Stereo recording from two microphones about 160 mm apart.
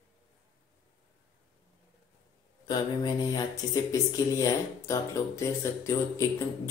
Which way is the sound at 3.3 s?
25° left (ahead or behind).